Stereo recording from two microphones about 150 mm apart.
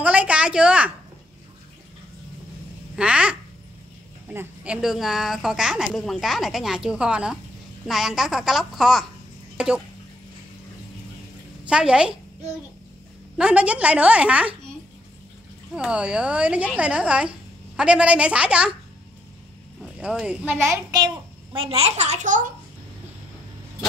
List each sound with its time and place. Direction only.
0.0 s a woman's voice: 10° right (ahead or behind)
3.0 s a child's voice: 5° right (ahead or behind)
4.8 s a woman's voice: centre (ahead or behind)
11.6 s a woman's voice: 5° right (ahead or behind)
13.4 s speech: 10° right (ahead or behind)
15.7 s speech: 5° right (ahead or behind)
19.8 s speech: 5° right (ahead or behind)
20.9 s child singing: 25° right (ahead or behind)
21.6 s a child's voice: 40° right (ahead or behind)